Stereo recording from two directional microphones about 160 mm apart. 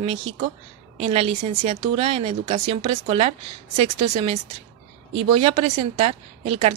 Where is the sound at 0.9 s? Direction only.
35° right (ahead or behind).